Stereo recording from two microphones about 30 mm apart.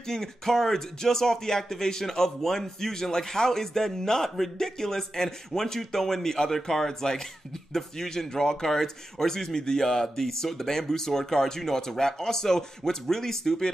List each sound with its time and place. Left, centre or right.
0.1 s speech: centre